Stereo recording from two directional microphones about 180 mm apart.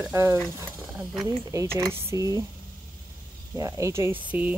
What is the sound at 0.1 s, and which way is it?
Speech, 15° right (ahead or behind).